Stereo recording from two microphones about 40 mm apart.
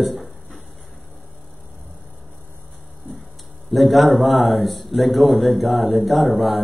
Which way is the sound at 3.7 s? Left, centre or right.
Centre.